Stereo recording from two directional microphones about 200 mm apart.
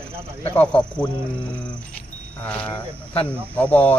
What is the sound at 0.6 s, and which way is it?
Speech, 5° left (ahead or behind).